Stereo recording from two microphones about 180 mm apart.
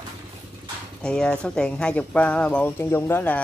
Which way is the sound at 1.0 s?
5° left (ahead or behind).